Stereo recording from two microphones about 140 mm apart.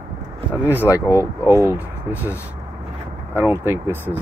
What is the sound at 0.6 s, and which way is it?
Speech, 15° right (ahead or behind).